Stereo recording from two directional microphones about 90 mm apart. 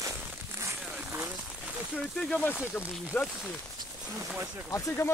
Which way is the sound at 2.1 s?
10° left (ahead or behind).